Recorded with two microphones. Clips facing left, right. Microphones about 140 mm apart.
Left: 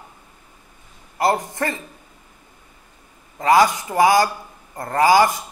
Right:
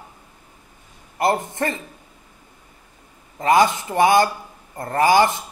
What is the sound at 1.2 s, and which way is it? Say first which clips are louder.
Speech: even; 20° right (ahead or behind).